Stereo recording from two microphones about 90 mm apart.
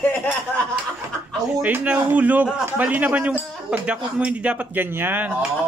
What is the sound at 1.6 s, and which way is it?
A man's voice, 15° right (ahead or behind).